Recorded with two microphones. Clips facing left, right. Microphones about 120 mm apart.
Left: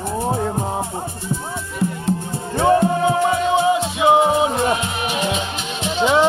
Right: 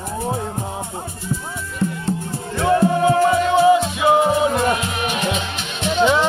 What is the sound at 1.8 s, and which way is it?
Music, 5° left (ahead or behind).